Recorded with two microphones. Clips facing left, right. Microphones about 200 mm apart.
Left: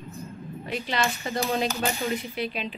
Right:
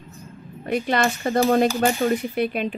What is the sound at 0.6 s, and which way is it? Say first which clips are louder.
Speech: right 7 dB; 55° right (ahead or behind).